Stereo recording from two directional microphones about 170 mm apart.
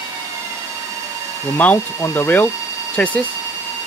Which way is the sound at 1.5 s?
10° left (ahead or behind).